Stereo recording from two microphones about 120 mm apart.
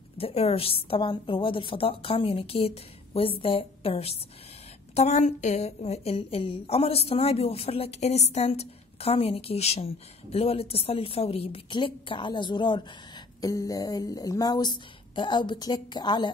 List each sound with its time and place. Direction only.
0.2 s a woman's voice: 55° left (ahead or behind)
4.9 s a woman's voice: 65° left (ahead or behind); by 12.8 s 40° left (ahead or behind)
13.4 s speech: 30° left (ahead or behind)